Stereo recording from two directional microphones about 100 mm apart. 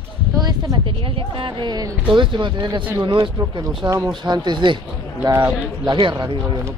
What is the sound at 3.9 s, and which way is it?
Speech, 40° right (ahead or behind).